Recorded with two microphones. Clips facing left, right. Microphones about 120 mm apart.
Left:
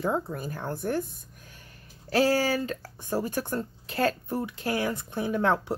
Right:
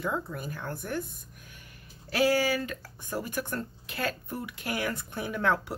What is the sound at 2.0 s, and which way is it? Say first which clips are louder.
Speech: left 2 dB; 35° left (ahead or behind).